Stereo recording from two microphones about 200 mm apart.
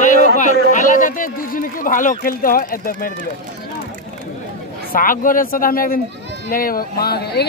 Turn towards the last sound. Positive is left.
turn(degrees=55)  # may be behind; listen again after turning